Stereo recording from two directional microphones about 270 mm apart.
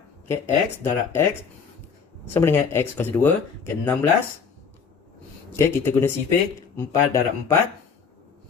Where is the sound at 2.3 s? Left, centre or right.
Centre.